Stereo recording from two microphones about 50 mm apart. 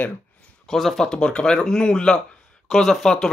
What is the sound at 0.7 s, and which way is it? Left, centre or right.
Speech, centre.